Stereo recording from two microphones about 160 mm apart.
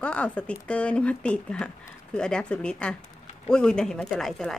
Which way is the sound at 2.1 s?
5° left (ahead or behind).